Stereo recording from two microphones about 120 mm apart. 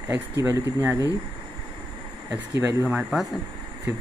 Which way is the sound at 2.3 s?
25° right (ahead or behind).